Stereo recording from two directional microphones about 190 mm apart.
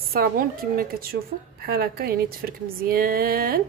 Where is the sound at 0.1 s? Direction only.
50° right (ahead or behind).